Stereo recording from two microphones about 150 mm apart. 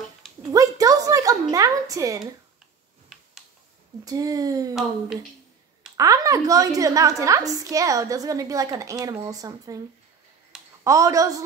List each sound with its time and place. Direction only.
0.4 s a sound: 25° right (ahead or behind)
4.0 s a woman's voice: 25° right (ahead or behind)
5.9 s a woman's voice: 20° right (ahead or behind)
10.8 s a woman's voice: 20° right (ahead or behind)